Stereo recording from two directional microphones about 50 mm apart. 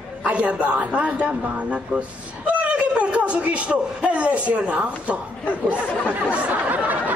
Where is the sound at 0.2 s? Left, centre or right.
Right.